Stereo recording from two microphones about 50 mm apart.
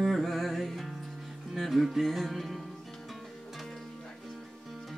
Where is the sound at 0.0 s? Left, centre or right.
Centre.